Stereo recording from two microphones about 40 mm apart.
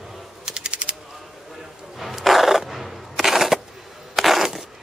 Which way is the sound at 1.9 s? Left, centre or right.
Centre.